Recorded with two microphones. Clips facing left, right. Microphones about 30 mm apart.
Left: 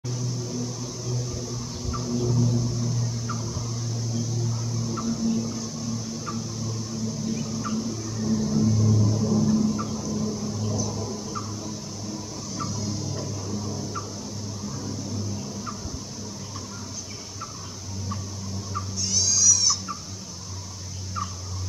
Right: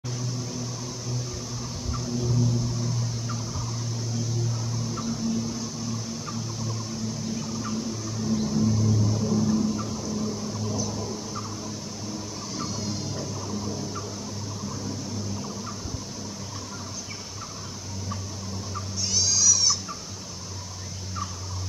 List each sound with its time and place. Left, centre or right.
1.9 s fowl: centre
4.5 s music: centre
7.2 s turkey: centre
8.5 s vehicle: centre
10.7 s a sound: centre
12.5 s a sound: centre
18.9 s goat: centre